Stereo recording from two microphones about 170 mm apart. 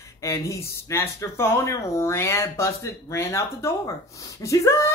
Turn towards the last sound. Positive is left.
turn(degrees=15)  # may be behind; listen again after turning